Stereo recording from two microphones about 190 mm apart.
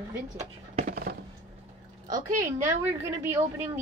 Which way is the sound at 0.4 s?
35° right (ahead or behind).